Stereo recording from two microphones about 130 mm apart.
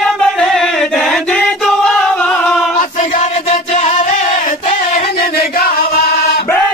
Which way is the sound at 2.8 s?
80° left.